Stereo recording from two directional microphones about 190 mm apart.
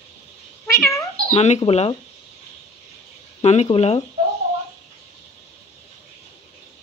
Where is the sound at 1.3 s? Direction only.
35° left (ahead or behind).